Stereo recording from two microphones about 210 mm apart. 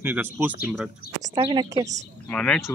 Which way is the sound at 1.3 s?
20° right (ahead or behind).